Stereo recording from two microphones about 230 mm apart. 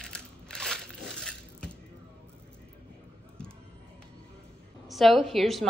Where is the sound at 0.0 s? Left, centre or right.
Centre.